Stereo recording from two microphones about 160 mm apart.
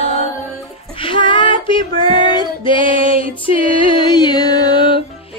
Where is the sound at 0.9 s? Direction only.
35° left (ahead or behind).